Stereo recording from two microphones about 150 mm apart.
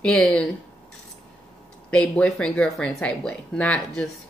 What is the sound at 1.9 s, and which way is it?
Speech, 5° left (ahead or behind).